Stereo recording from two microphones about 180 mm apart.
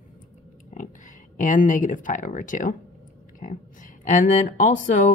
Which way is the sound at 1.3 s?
45° left (ahead or behind).